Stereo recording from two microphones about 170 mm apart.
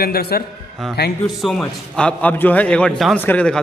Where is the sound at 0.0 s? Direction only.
65° left (ahead or behind).